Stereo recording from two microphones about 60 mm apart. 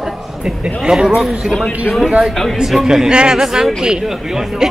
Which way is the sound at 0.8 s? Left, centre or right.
Centre.